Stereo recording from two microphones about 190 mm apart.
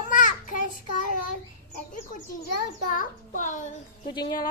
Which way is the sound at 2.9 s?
40° left (ahead or behind).